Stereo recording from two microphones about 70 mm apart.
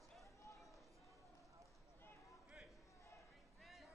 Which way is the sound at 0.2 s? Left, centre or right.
Left.